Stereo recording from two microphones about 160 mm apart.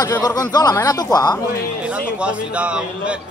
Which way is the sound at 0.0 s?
20° left (ahead or behind).